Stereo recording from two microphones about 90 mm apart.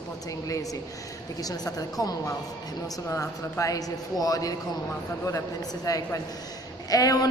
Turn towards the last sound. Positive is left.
turn(degrees=40)  # may be behind; listen again after turning